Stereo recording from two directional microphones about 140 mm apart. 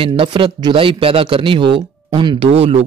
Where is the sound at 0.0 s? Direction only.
40° right (ahead or behind).